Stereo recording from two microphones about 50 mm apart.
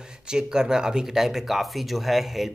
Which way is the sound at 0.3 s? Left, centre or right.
Centre.